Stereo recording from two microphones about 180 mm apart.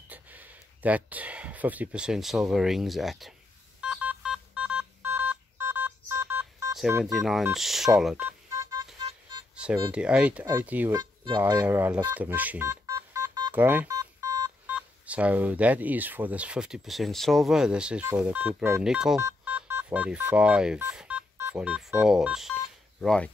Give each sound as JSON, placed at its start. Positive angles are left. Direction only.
{"t": 0.1, "sound": "speech", "side_deg": -10}
{"t": 3.8, "sound": "telephone dialing", "side_deg": -5}
{"t": 6.8, "sound": "speech", "side_deg": -5}
{"t": 8.5, "sound": "vehicle", "side_deg": -15}
{"t": 9.9, "sound": "speech", "side_deg": -5}
{"t": 11.0, "sound": "speech", "side_deg": -25}
{"t": 11.5, "sound": "speech", "side_deg": -10}
{"t": 13.6, "sound": "speech", "side_deg": -10}
{"t": 13.8, "sound": "telephone dialing", "side_deg": -20}
{"t": 14.7, "sound": "speech", "side_deg": -5}
{"t": 20.9, "sound": "telephone dialing", "side_deg": -5}
{"t": 21.4, "sound": "speech", "side_deg": -10}